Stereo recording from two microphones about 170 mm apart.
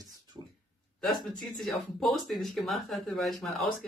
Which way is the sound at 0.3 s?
20° right (ahead or behind).